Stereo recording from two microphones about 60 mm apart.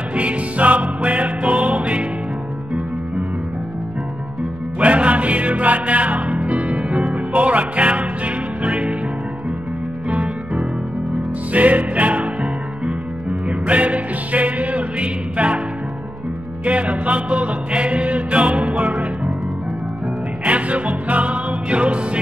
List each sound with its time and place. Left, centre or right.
0.1 s music: right
4.7 s music: right
10.1 s music: centre
11.5 s music: right
13.5 s music: right
16.6 s music: right
20.4 s music: right